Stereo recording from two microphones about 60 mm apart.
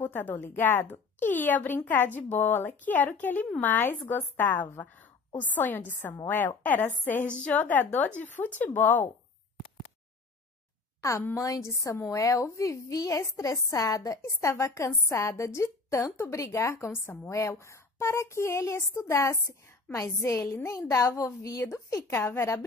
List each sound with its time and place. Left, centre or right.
0.0 s a woman's voice: left
11.0 s a woman's voice: left
14.5 s speech: left
15.0 s speech: left
17.3 s speech: left
21.2 s a child's voice: left